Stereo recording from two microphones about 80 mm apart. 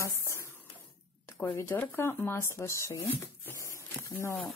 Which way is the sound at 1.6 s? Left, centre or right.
Left.